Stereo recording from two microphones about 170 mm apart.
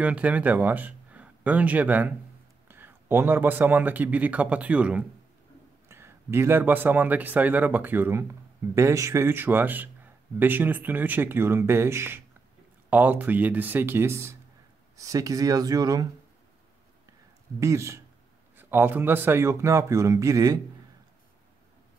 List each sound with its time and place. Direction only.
0.0 s speech: 5° right (ahead or behind)
17.6 s speech: 15° right (ahead or behind)